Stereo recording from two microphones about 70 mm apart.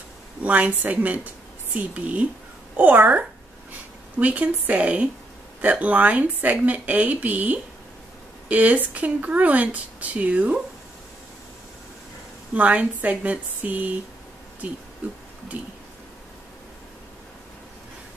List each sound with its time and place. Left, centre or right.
0.4 s speech: right
12.5 s speech: right